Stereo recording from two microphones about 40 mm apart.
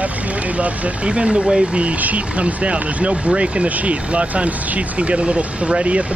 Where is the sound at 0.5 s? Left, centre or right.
Right.